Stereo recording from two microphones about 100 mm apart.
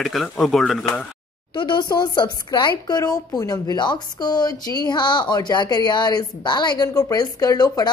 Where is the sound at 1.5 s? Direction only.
50° left (ahead or behind).